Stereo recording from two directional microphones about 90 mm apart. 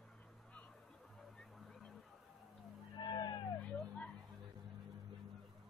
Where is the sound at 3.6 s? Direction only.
15° left (ahead or behind).